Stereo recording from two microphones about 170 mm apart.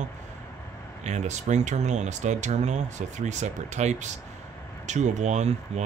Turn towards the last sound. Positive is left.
turn(degrees=-40)  # may be behind; listen again after turning